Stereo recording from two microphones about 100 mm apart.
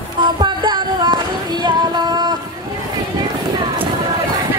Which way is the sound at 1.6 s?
45° right (ahead or behind).